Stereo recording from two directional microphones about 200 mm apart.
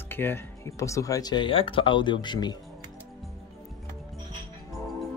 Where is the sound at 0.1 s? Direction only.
10° left (ahead or behind).